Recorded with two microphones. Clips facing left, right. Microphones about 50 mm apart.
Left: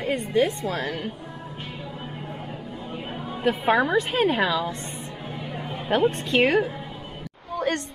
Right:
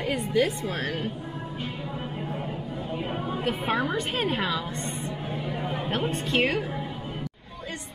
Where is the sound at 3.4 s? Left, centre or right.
Centre.